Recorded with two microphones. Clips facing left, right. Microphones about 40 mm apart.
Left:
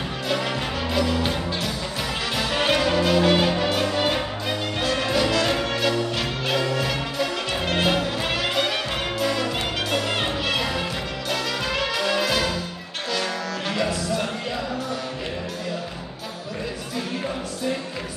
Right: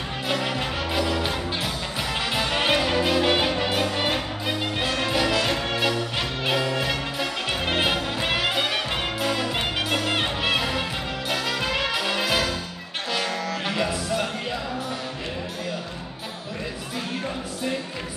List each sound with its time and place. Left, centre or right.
0.3 s music: centre
11.2 s brass instrument: centre
13.1 s music: centre